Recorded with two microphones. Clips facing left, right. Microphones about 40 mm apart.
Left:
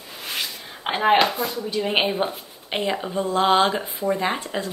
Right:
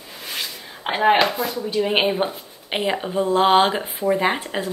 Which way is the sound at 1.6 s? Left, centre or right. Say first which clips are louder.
Right 3 dB; centre.